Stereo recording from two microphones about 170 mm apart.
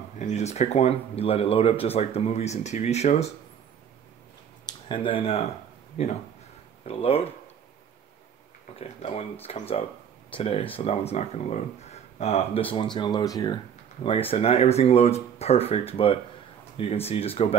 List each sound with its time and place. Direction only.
0.2 s speech: 40° left (ahead or behind)
4.6 s speech: 30° left (ahead or behind)
8.7 s speech: 35° left (ahead or behind); by 13.6 s 20° left (ahead or behind)
14.3 s speech: 40° left (ahead or behind)